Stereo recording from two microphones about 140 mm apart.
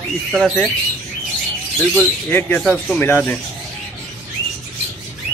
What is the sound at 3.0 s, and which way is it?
Speech, 15° left (ahead or behind).